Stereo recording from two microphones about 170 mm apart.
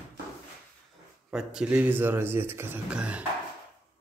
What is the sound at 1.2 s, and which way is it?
Speech, 5° right (ahead or behind).